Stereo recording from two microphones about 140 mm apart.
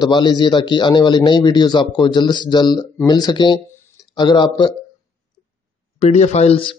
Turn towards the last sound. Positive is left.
turn(degrees=40)  # may be behind; listen again after turning